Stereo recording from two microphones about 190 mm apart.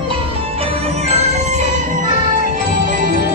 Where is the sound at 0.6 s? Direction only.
35° right (ahead or behind).